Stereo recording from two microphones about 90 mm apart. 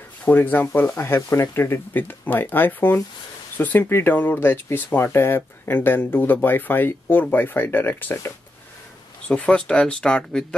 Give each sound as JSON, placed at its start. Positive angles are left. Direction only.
{"t": 0.2, "sound": "speech", "side_deg": 20}
{"t": 9.3, "sound": "speech", "side_deg": 10}